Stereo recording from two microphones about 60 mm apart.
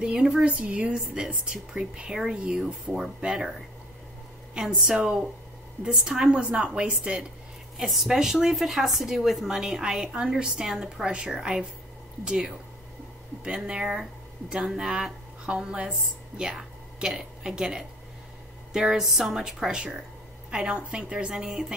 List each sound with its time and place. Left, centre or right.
0.0 s speech: centre
4.6 s speech: centre
13.7 s speech: centre